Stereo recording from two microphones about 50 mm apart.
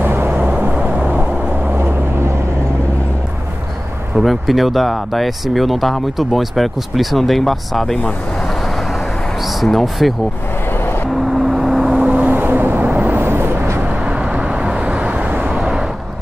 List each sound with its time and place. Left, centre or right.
0.0 s vehicle: right
0.3 s vehicle: right
1.8 s vehicle: right
4.2 s speech: centre
9.6 s speech: centre
11.1 s vehicle: centre
11.9 s vehicle: right
12.4 s vehicle: right
13.2 s vehicle: right
13.8 s vehicle: right